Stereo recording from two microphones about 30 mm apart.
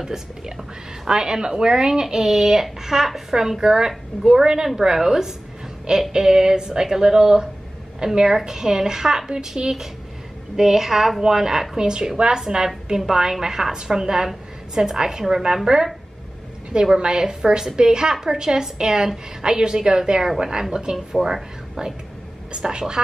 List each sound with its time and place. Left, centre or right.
0.1 s a woman's voice: centre
9.6 s speech: right
10.5 s a woman's voice: centre
16.9 s a woman's voice: right